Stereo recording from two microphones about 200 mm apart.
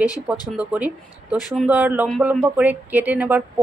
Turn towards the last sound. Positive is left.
turn(degrees=-10)  # may be behind; listen again after turning